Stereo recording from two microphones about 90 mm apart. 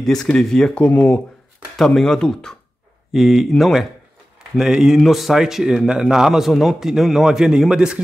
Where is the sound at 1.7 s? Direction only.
5° left (ahead or behind).